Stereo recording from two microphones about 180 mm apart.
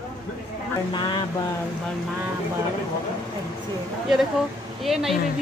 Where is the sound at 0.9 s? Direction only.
25° left (ahead or behind).